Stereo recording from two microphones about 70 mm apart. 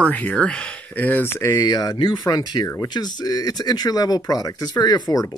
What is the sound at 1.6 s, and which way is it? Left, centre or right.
Speech, left.